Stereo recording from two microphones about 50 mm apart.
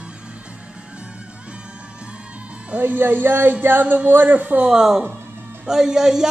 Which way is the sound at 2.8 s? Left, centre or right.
Right.